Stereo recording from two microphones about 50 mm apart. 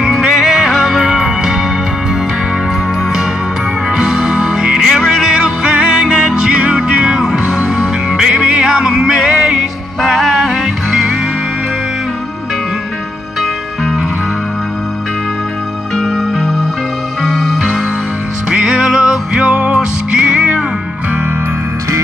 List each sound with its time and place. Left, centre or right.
0.0 s music: centre
3.9 s music: centre
16.0 s music: centre